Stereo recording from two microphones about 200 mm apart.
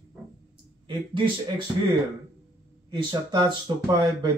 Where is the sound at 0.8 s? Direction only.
25° right (ahead or behind).